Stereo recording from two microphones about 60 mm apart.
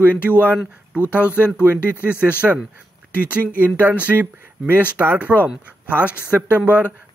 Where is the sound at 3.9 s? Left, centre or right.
Right.